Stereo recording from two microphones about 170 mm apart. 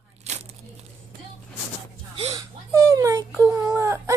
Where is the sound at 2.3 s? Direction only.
15° right (ahead or behind).